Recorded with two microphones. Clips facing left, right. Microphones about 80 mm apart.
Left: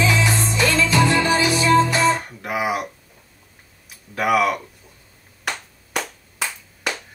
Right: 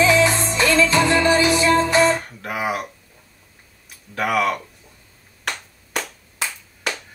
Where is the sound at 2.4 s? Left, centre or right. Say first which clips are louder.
Left 2 dB; centre.